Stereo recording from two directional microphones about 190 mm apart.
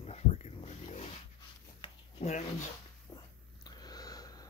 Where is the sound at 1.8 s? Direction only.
30° left (ahead or behind).